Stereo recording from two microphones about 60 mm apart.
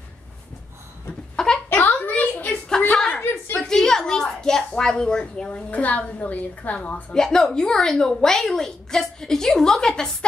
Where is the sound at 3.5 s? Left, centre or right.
Centre; by 7.2 s left.